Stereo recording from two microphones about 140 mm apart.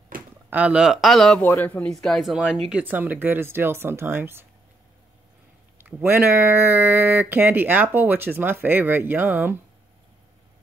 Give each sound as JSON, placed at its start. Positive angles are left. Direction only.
{"t": 0.1, "sound": "a sound", "side_deg": -90}
{"t": 0.5, "sound": "speech", "side_deg": -10}
{"t": 1.4, "sound": "a man's voice", "side_deg": 15}
{"t": 2.0, "sound": "speech", "side_deg": 0}
{"t": 2.8, "sound": "speech", "side_deg": -10}
{"t": 5.8, "sound": "speech", "side_deg": -15}